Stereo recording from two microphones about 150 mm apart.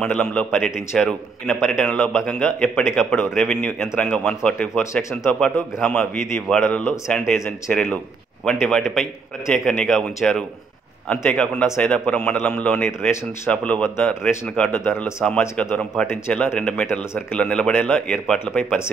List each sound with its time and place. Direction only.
0.0 s a man's voice: 5° left (ahead or behind)